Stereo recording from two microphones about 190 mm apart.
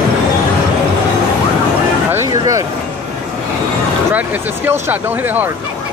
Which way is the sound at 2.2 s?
15° right (ahead or behind).